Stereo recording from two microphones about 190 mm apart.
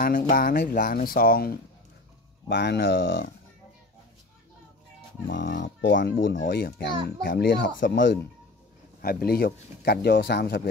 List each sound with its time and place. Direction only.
0.0 s speech: 45° left (ahead or behind)
2.4 s speech: 65° left (ahead or behind)
5.3 s speech: 75° left (ahead or behind)
6.5 s speech: 50° left (ahead or behind); by 8.2 s 75° left (ahead or behind)
9.0 s speech: 50° left (ahead or behind)